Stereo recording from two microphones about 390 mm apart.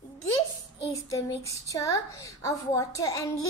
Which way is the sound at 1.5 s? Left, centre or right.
Centre.